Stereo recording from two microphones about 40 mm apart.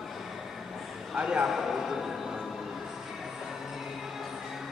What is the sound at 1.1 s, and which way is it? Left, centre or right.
Speech, right.